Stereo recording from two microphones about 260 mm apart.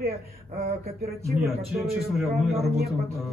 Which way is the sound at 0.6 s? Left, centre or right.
Right.